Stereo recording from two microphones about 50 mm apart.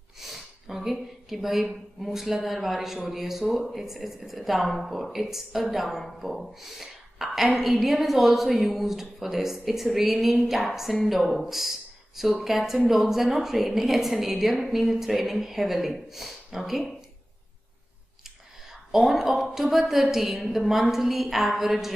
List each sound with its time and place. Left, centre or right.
0.2 s a woman's voice: centre
18.7 s a woman's voice: centre